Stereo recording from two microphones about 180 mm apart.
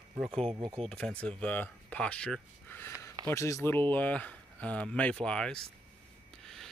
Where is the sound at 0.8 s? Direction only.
5° left (ahead or behind).